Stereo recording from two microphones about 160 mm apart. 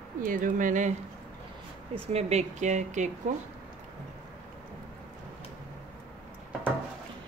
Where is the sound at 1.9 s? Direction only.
40° right (ahead or behind).